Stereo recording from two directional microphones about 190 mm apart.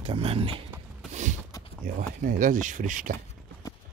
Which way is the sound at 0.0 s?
30° right (ahead or behind).